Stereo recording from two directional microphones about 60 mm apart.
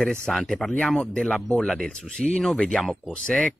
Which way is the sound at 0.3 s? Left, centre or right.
Centre.